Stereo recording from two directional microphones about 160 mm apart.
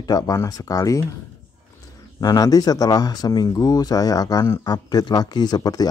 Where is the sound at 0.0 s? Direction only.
20° left (ahead or behind).